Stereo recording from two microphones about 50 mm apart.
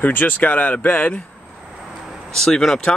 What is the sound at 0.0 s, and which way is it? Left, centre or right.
Speech, left.